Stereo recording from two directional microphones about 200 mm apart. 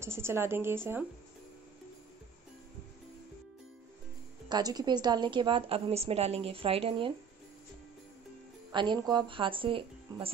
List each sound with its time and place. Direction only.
0.0 s a woman's voice: 10° right (ahead or behind)
4.5 s a woman's voice: 20° right (ahead or behind)
8.7 s a woman's voice: 20° right (ahead or behind)